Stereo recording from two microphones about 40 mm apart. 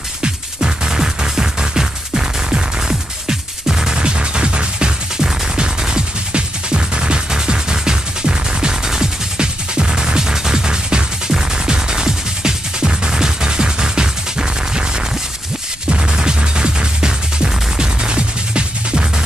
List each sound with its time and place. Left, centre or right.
0.2 s music: centre